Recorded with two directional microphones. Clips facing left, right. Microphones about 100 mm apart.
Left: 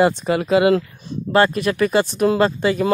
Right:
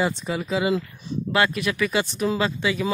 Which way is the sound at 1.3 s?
40° left (ahead or behind).